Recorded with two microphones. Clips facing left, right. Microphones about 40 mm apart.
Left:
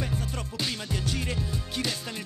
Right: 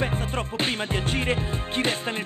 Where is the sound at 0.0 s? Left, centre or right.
Right.